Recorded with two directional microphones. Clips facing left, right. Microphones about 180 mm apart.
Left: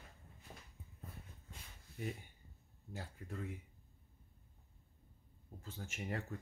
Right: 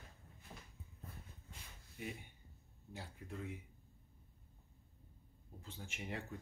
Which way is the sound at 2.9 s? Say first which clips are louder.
Left 2 dB; 45° left (ahead or behind).